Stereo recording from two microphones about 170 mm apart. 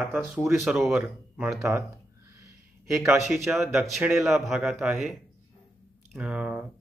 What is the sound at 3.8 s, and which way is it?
Speech, 5° right (ahead or behind).